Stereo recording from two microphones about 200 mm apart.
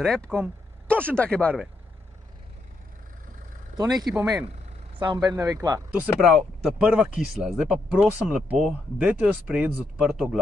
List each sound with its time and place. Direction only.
0.0 s speech: 5° left (ahead or behind)
3.7 s speech: 20° right (ahead or behind)
5.9 s speech: centre (ahead or behind)